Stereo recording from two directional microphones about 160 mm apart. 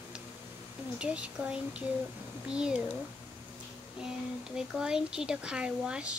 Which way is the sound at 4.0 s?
5° right (ahead or behind).